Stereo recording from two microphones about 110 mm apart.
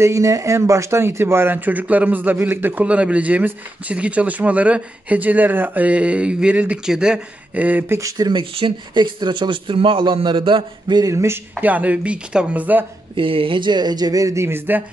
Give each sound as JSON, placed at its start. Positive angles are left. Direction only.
{"t": 0.0, "sound": "speech", "side_deg": -30}
{"t": 8.0, "sound": "speech", "side_deg": -40}
{"t": 11.5, "sound": "speech", "side_deg": -15}
{"t": 13.1, "sound": "speech", "side_deg": -50}